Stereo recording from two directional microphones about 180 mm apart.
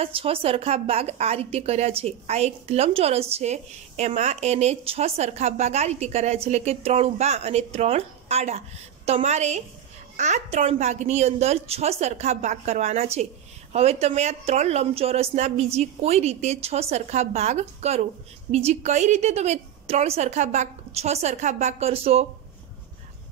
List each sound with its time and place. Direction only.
0.0 s a woman's voice: 30° right (ahead or behind)